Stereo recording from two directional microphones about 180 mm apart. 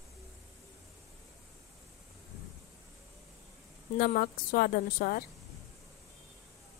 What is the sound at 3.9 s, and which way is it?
A woman's voice, 60° left (ahead or behind).